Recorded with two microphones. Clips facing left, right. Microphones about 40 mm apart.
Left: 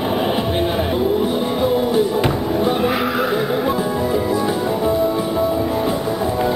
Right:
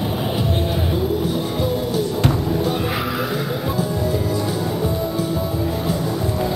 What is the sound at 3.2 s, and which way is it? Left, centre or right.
Music, centre.